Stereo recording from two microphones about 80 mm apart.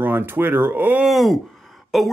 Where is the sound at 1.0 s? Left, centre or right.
Centre.